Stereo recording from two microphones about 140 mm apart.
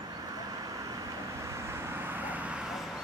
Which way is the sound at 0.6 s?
25° right (ahead or behind).